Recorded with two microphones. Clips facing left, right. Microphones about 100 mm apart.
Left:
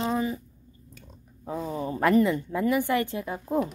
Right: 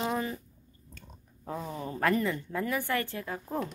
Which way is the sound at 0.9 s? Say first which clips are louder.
Even; 10° left (ahead or behind).